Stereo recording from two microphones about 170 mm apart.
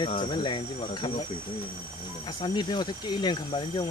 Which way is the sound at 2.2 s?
25° left (ahead or behind).